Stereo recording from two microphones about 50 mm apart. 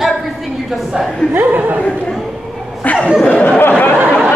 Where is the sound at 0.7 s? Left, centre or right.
Centre.